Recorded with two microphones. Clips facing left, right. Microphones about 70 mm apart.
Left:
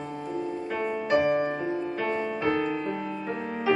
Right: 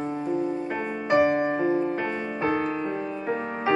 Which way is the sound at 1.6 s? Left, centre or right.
Right.